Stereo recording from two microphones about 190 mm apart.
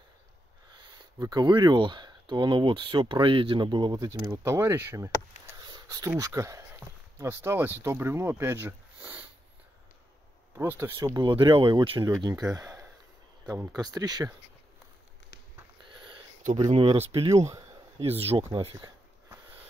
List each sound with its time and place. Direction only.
1.2 s speech: 20° right (ahead or behind)
10.5 s speech: 10° right (ahead or behind)
11.1 s speech: 25° right (ahead or behind)
15.9 s a sound: 25° right (ahead or behind)
16.6 s speech: 30° right (ahead or behind)